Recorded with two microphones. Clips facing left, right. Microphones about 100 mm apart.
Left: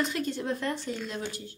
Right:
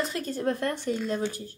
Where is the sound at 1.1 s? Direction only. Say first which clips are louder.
Right 6 dB; 45° right (ahead or behind).